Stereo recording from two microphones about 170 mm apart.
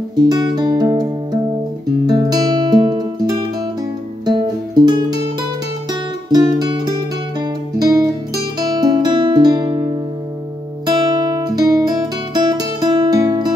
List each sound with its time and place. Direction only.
0.1 s music: 25° right (ahead or behind)
6.3 s music: 25° right (ahead or behind)
11.1 s guitar: 25° right (ahead or behind)